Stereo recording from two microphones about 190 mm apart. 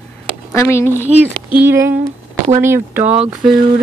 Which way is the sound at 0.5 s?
15° left (ahead or behind).